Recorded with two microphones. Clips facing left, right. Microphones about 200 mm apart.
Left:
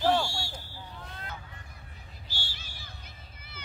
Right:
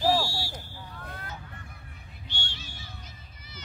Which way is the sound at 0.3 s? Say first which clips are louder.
Right 2 dB; 20° left (ahead or behind).